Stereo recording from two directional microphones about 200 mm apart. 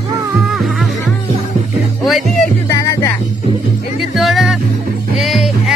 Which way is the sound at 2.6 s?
15° left (ahead or behind).